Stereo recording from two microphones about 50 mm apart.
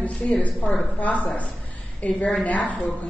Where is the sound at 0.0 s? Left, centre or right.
Left.